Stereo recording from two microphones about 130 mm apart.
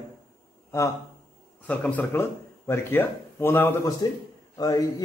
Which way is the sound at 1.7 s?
10° left (ahead or behind).